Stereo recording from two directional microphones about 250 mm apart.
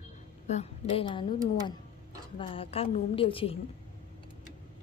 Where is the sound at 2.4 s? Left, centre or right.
Left.